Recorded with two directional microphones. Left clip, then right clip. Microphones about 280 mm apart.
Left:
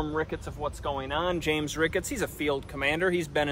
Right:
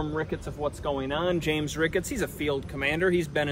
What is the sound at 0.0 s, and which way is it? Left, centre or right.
Speech, centre.